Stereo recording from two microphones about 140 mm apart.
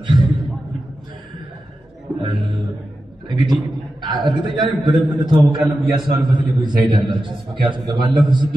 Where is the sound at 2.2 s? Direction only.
30° right (ahead or behind).